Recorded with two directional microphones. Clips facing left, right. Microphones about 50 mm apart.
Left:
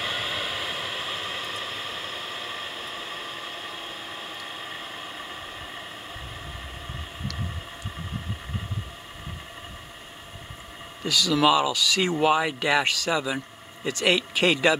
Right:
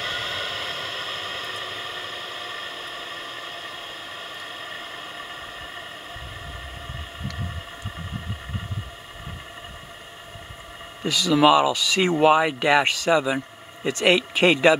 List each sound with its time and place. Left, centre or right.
0.0 s vehicle: centre
11.1 s speech: centre